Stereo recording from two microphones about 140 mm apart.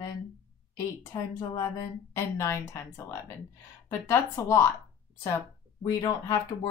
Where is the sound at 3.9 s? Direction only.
20° left (ahead or behind).